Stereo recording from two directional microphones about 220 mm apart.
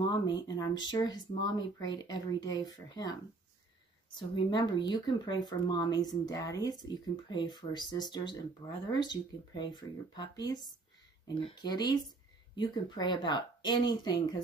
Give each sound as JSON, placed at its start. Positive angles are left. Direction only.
{"t": 0.0, "sound": "speech", "side_deg": 15}